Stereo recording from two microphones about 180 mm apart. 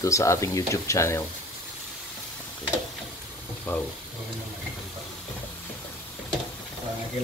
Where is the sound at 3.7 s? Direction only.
10° left (ahead or behind).